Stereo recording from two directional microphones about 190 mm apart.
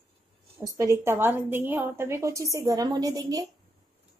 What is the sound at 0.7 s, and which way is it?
Speech, 15° right (ahead or behind).